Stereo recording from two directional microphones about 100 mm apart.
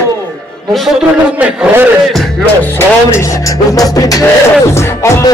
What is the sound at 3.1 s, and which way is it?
A man's voice, 30° left (ahead or behind).